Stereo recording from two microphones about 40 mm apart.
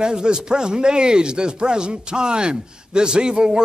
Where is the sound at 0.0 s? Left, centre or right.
Right.